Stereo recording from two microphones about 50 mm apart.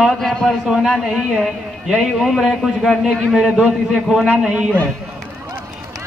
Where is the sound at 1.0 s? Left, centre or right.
Centre.